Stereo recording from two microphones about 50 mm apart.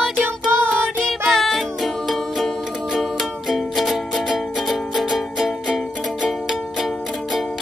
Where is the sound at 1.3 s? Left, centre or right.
Centre.